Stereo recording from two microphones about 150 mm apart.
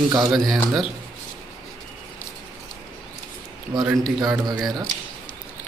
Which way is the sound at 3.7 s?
20° right (ahead or behind).